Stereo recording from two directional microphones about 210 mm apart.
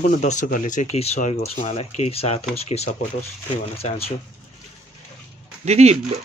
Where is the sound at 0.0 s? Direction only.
40° left (ahead or behind).